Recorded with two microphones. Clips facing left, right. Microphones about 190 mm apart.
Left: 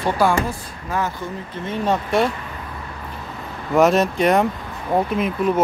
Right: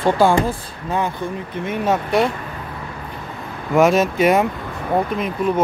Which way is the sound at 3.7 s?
Centre (ahead or behind).